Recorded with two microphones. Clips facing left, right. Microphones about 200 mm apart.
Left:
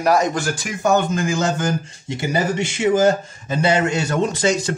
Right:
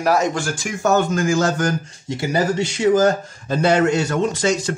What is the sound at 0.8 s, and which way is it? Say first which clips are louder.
Speech: right 1 dB; 15° left (ahead or behind).